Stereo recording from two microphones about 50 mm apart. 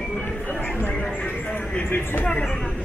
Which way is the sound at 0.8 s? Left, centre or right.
Left.